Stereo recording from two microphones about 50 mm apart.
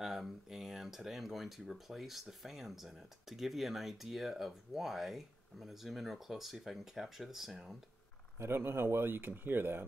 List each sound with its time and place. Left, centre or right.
0.0 s speech: centre
8.4 s speech: right